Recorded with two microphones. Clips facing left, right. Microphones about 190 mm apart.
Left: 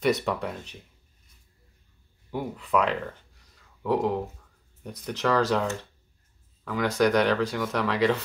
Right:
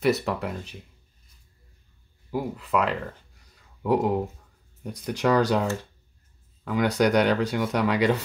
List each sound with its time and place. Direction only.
0.0 s speech: 5° right (ahead or behind)
2.3 s speech: centre (ahead or behind)
3.8 s speech: 15° right (ahead or behind)